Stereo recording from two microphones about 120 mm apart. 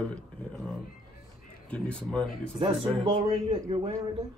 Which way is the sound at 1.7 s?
10° left (ahead or behind).